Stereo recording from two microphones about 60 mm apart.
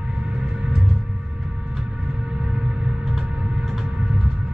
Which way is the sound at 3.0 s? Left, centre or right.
Centre.